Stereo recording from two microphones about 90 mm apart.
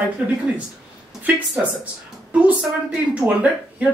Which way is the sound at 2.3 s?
10° right (ahead or behind).